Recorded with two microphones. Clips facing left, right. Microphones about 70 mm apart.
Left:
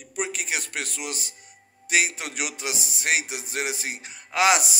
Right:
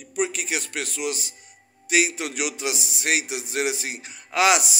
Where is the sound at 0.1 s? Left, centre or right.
Left.